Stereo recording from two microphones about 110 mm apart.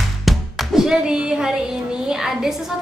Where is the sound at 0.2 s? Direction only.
Centre (ahead or behind).